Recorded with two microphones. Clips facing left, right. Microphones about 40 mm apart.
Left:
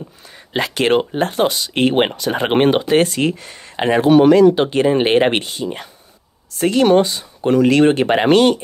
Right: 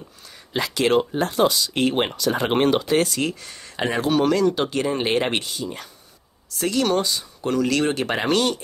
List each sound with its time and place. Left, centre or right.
0.5 s speech: left